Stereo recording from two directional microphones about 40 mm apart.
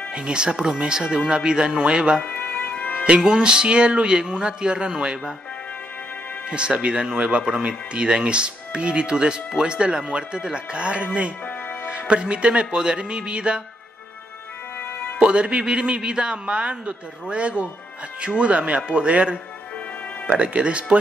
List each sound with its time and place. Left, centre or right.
0.1 s speech: right
2.2 s music: left
3.3 s speech: right
6.5 s speech: right
15.1 s speech: right
18.8 s speech: right
19.0 s speech: right